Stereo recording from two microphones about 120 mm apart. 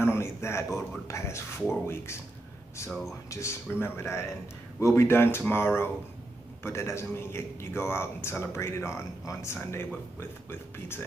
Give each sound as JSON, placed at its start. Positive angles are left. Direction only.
{"t": 0.0, "sound": "a man's voice", "side_deg": 20}
{"t": 2.9, "sound": "speech", "side_deg": 0}
{"t": 3.3, "sound": "a man's voice", "side_deg": 25}